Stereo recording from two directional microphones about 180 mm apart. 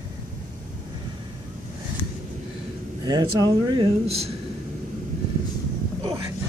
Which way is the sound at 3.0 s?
20° right (ahead or behind).